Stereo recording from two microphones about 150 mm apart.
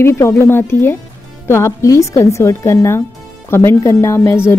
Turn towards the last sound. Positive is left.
turn(degrees=15)  # may be behind; listen again after turning